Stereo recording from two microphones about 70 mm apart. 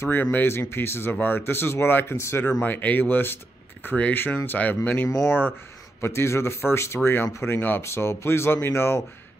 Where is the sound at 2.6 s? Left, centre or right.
Left.